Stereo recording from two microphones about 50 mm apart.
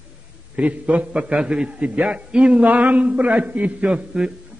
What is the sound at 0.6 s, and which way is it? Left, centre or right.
Speech, right.